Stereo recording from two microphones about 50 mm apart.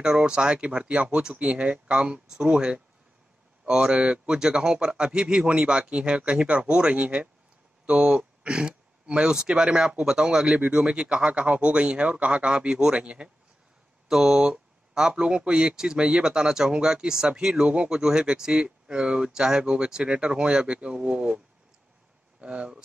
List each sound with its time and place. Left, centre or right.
0.0 s speech: centre
14.0 s speech: centre
22.4 s speech: right